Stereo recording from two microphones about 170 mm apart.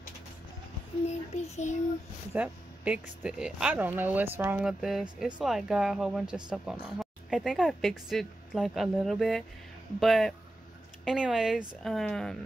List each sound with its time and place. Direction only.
1.0 s child singing: 45° left (ahead or behind)
2.3 s speech: 5° right (ahead or behind)